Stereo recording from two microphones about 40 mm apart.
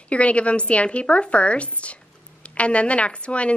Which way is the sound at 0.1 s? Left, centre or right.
Left.